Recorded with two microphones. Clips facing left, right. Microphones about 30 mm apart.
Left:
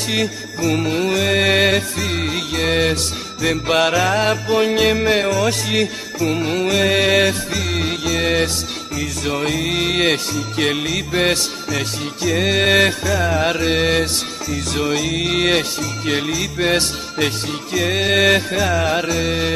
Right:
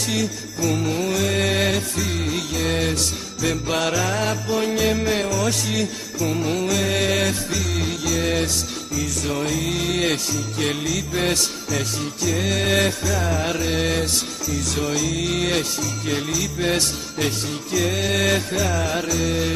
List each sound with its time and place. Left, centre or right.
0.1 s music: left
13.2 s music: left